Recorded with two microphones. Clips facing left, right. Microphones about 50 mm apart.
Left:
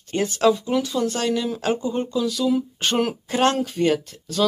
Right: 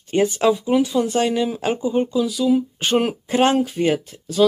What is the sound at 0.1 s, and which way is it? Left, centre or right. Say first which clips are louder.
Speech: right 2 dB; centre.